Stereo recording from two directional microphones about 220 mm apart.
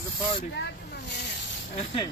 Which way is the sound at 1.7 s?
25° left (ahead or behind).